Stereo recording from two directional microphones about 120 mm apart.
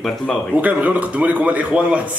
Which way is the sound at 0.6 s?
15° right (ahead or behind).